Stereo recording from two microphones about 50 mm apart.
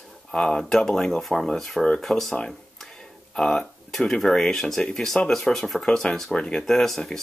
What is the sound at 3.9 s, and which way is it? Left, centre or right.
Speech, centre.